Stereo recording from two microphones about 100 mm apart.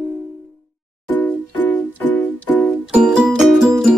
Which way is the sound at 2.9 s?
10° right (ahead or behind).